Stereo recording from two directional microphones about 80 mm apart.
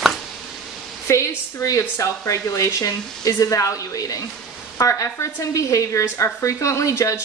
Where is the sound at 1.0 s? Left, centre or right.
Left.